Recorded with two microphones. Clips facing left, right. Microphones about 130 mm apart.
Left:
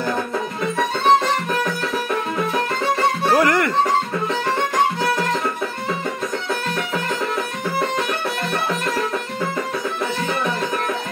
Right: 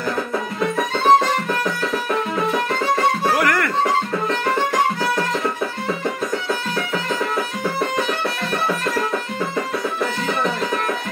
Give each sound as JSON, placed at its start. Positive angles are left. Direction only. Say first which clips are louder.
{"t": 3.3, "sound": "music", "louder": "left 2 dB", "side_deg": 25}